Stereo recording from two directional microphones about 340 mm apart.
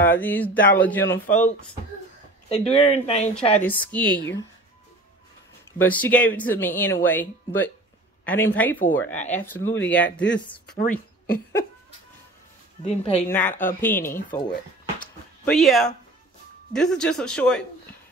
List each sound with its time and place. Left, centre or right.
0.0 s speech: centre
1.1 s speech: left
2.5 s speech: centre
3.6 s speech: centre
5.8 s speech: centre
12.8 s speech: centre
13.3 s speech: centre
14.0 s speech: left
15.0 s a sound: centre
16.7 s speech: centre